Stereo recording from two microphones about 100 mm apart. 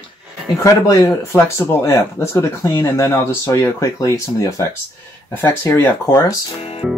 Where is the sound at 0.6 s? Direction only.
35° left (ahead or behind).